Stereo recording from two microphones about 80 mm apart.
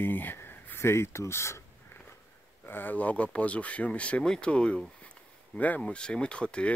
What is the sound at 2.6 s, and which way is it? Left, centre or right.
Speech, left.